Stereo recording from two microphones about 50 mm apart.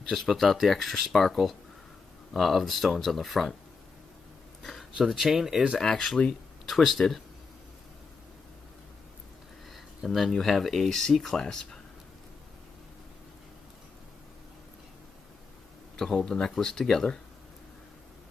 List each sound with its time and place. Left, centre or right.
0.1 s speech: centre
4.9 s speech: centre
5.8 s speech: centre
6.7 s speech: centre
10.0 s speech: centre
16.0 s speech: centre